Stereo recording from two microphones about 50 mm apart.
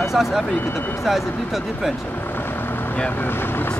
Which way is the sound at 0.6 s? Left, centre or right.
Left.